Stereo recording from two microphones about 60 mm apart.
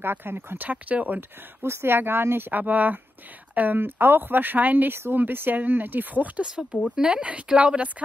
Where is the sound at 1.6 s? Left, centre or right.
Right.